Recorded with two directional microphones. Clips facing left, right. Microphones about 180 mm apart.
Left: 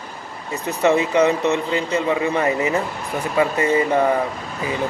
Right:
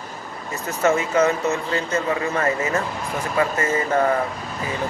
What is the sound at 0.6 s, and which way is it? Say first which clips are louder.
Speech: left 3 dB; 15° left (ahead or behind).